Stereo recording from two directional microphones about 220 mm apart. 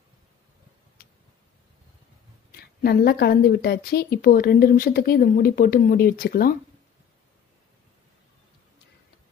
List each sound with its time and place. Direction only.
2.8 s a woman's voice: 45° left (ahead or behind)